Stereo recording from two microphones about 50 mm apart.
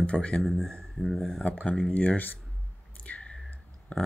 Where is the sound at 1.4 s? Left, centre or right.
Left.